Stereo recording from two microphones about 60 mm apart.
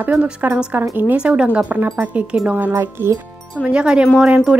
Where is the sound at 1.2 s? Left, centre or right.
Centre.